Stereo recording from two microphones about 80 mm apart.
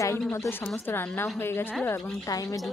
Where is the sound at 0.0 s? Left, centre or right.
Left.